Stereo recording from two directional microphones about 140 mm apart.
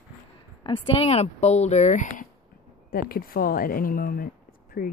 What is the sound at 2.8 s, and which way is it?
A woman's voice, 90° left.